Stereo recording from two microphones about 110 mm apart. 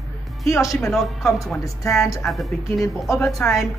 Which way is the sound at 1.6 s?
30° left (ahead or behind).